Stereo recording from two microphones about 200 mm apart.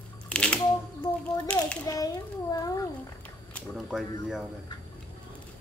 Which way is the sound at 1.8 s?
20° left (ahead or behind).